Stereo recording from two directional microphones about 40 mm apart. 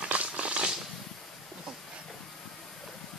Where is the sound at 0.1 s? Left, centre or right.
Right.